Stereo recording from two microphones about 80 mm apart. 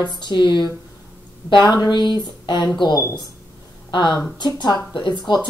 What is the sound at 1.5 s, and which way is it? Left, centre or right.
Speech, left.